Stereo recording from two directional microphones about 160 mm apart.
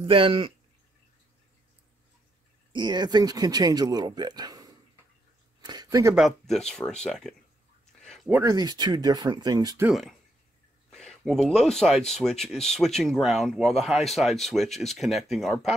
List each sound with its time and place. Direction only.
0.0 s speech: 35° right (ahead or behind)
2.7 s speech: 25° right (ahead or behind)
5.6 s a sound: 25° right (ahead or behind)
6.1 s speech: centre (ahead or behind)
8.0 s a sound: 5° left (ahead or behind)
8.5 s speech: 25° right (ahead or behind)
9.8 s speech: centre (ahead or behind)
10.9 s a sound: centre (ahead or behind)
11.4 s speech: 5° left (ahead or behind)